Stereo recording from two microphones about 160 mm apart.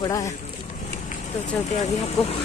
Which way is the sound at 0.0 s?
20° left (ahead or behind).